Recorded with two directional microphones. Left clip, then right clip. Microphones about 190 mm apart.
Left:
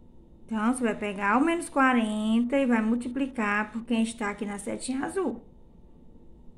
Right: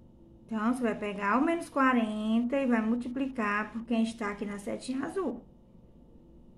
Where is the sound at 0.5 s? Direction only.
30° left (ahead or behind).